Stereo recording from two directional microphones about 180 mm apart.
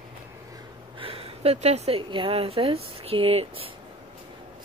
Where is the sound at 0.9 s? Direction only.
30° right (ahead or behind).